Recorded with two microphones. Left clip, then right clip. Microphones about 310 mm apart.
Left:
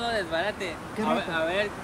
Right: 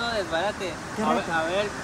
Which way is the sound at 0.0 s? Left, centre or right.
Centre.